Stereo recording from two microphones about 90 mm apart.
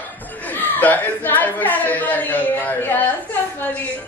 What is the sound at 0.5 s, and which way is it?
A woman's voice, 20° left (ahead or behind).